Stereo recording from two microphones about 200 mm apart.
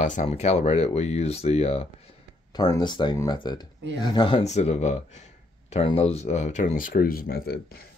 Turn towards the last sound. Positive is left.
turn(degrees=50)  # may be behind; listen again after turning